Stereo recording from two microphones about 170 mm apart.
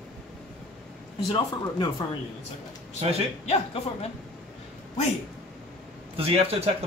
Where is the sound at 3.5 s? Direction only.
35° left (ahead or behind).